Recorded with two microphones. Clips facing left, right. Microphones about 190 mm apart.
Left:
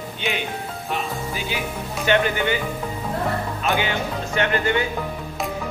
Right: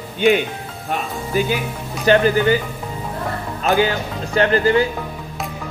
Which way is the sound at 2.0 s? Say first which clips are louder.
Right 6 dB; 35° right (ahead or behind).